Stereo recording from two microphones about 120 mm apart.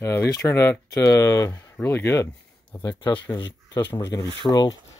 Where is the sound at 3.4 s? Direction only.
30° left (ahead or behind).